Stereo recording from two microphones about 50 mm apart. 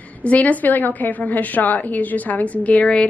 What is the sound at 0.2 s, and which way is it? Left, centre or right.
Speech, left.